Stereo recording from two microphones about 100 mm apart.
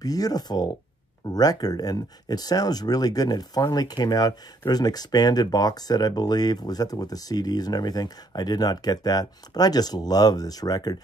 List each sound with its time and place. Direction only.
0.0 s speech: 40° left (ahead or behind)